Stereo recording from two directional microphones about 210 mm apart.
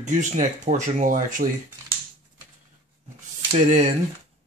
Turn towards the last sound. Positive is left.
turn(degrees=-35)  # may be behind; listen again after turning